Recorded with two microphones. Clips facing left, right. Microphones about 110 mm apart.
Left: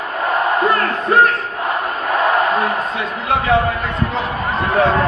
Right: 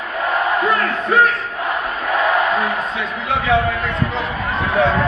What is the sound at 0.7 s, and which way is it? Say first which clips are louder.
Battle cry: left 2 dB; 40° left (ahead or behind).